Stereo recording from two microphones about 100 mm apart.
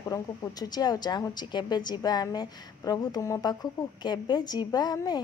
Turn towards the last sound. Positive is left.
turn(degrees=40)  # may be behind; listen again after turning